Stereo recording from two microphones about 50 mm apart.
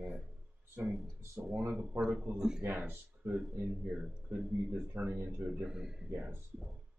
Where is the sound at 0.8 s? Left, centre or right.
Right; by 2.6 s centre.